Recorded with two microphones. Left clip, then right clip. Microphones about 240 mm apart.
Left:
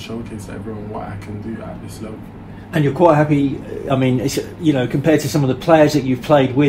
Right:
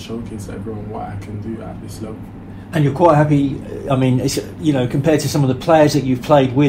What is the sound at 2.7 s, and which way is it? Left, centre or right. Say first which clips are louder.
A man's voice: even; right.